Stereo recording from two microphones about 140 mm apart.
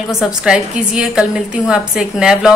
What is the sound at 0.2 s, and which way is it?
A woman's voice, 5° right (ahead or behind).